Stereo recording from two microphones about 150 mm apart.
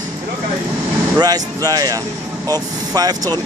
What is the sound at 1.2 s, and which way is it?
Speech, 25° right (ahead or behind).